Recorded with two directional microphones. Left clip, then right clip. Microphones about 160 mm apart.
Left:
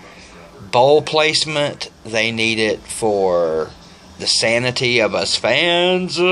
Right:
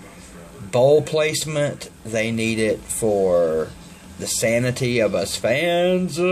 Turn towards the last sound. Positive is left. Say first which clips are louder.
# left 3 dB
turn(degrees=-20)  # may be behind; listen again after turning